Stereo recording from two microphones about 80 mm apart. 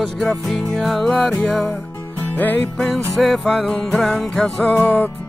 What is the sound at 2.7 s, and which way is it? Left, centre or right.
Music, centre.